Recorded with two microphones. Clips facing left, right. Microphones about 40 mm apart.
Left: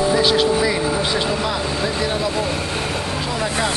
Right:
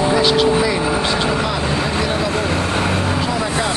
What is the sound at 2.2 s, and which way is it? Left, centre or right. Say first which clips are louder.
Speech: right 3 dB; right.